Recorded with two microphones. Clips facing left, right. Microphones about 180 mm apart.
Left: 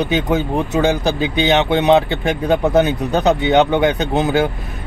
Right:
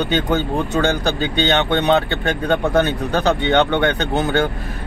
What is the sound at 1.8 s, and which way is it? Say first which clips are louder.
Speech: left 3 dB; 20° left (ahead or behind).